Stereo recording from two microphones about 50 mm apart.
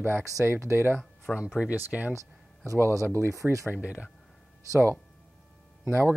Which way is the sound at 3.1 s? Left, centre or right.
Right.